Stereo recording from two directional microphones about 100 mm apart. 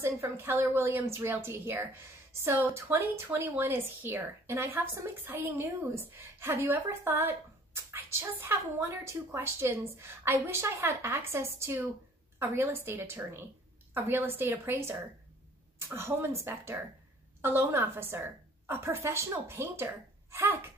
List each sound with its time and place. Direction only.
0.0 s a woman's voice: 25° right (ahead or behind)
17.4 s a woman's voice: 20° right (ahead or behind)